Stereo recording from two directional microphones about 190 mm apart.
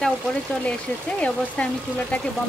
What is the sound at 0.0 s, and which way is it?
A woman's voice, 5° left (ahead or behind).